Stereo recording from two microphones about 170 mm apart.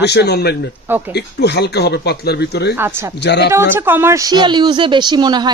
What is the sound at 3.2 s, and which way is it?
Speech, 90° left.